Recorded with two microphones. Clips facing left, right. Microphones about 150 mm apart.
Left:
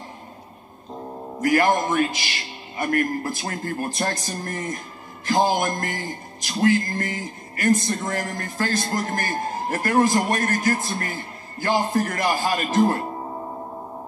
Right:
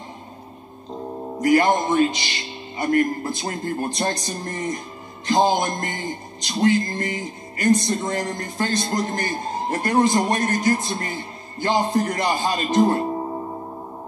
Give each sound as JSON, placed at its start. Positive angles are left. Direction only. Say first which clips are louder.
{"t": 1.4, "sound": "speech", "louder": "right 2 dB", "side_deg": -20}